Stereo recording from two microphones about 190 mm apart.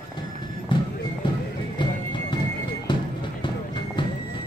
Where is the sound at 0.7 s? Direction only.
25° left (ahead or behind).